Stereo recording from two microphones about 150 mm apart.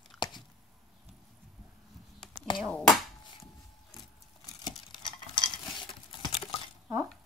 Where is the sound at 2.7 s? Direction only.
5° left (ahead or behind).